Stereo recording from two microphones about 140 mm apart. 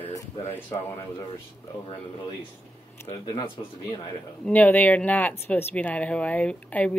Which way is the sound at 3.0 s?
40° left (ahead or behind).